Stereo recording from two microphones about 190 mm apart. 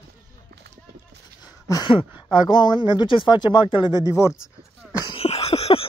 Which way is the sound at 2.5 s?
25° left (ahead or behind).